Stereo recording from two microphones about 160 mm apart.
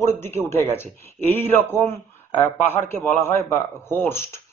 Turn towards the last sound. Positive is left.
turn(degrees=15)  # may be behind; listen again after turning